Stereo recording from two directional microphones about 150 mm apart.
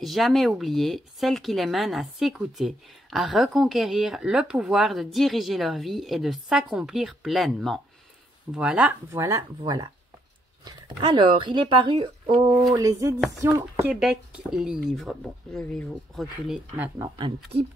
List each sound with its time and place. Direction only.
0.0 s speech: centre (ahead or behind)
9.1 s speech: 20° right (ahead or behind)
13.9 s speech: 5° right (ahead or behind)
17.2 s speech: 40° right (ahead or behind)